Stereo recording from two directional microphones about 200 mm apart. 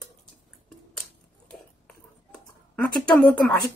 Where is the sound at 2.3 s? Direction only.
5° left (ahead or behind).